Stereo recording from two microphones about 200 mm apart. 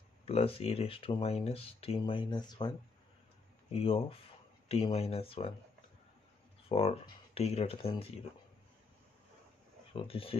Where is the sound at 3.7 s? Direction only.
30° left (ahead or behind).